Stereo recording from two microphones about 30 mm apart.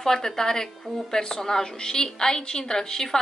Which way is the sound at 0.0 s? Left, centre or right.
Centre.